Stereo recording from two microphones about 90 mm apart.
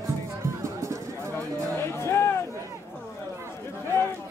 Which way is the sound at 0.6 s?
35° right (ahead or behind).